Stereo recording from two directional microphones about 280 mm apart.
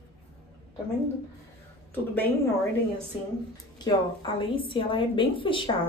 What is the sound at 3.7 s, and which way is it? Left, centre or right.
A woman's voice, centre.